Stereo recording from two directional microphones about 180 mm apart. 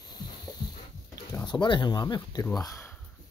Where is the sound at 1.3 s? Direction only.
25° left (ahead or behind).